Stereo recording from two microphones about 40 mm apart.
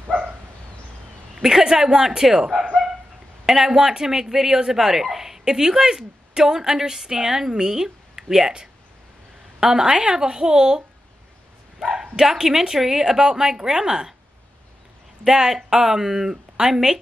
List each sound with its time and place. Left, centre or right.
1.3 s a woman's voice: centre
11.8 s speech: centre
15.2 s speech: centre